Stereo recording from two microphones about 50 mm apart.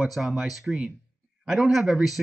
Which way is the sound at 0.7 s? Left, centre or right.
Centre.